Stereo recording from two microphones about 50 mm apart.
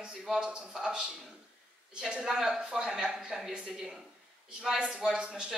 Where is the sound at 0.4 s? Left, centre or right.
Centre.